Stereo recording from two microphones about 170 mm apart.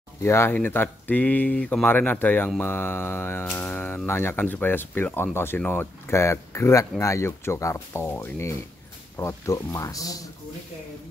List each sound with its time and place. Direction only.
0.2 s speech: 15° left (ahead or behind)